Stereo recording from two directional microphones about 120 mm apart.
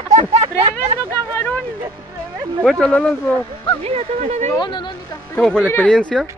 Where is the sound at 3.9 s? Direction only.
70° right (ahead or behind).